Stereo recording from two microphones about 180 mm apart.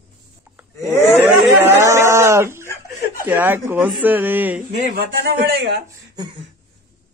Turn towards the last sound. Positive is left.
turn(degrees=-25)  # may be behind; listen again after turning